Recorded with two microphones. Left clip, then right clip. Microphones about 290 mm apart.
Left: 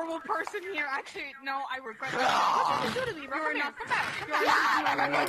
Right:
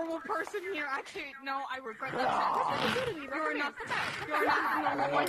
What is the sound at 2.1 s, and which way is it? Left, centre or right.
Speech, left.